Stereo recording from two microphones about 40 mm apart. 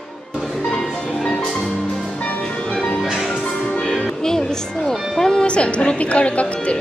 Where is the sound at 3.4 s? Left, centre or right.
Centre.